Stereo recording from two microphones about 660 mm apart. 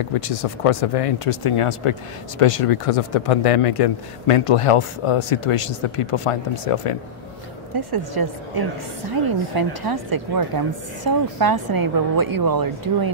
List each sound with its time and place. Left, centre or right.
0.1 s speech: left
7.7 s a woman's voice: right